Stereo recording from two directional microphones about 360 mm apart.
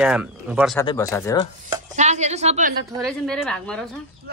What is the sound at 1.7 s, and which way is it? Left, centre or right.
Dishes, centre.